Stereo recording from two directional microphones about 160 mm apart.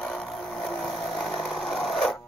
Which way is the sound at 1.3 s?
Centre (ahead or behind).